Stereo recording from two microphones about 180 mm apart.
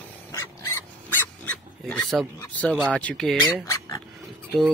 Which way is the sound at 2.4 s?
5° left (ahead or behind).